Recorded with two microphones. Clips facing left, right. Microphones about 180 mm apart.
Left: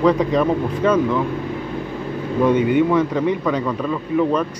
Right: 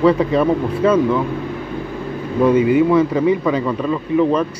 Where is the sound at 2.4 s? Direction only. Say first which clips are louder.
Right 3 dB; 5° right (ahead or behind).